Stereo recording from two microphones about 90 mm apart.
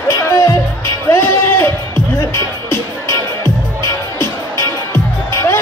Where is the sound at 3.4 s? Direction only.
55° right (ahead or behind).